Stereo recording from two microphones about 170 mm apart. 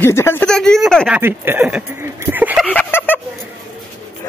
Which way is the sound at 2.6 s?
10° left (ahead or behind).